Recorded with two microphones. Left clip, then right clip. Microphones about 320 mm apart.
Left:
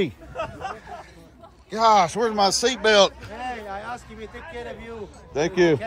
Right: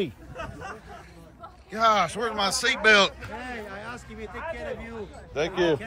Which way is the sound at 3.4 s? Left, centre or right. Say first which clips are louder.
Left 8 dB; left.